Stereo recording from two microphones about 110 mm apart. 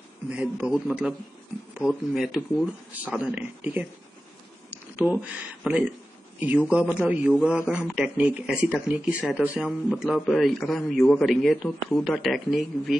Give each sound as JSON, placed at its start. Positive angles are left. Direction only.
{"t": 0.4, "sound": "speech", "side_deg": -10}
{"t": 4.6, "sound": "a sound", "side_deg": -15}
{"t": 5.6, "sound": "speech", "side_deg": -10}